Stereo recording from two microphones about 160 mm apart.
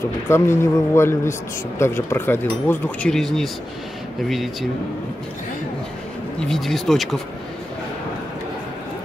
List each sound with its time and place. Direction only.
0.3 s speech: 15° left (ahead or behind)
3.1 s speech: 5° left (ahead or behind)
6.4 s speech: centre (ahead or behind)